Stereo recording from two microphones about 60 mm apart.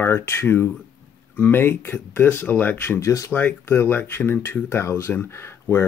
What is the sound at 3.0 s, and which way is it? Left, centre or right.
Speech, left.